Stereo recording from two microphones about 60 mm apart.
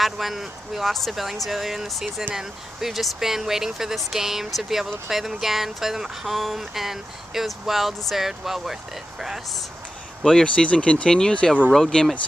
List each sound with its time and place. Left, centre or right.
0.0 s speech: centre
10.2 s speech: centre